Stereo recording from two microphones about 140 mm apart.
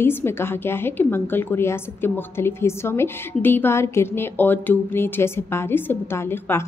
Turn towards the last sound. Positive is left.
turn(degrees=15)  # may be behind; listen again after turning